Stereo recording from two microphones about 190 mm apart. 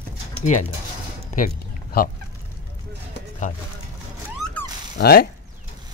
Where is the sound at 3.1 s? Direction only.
40° left (ahead or behind).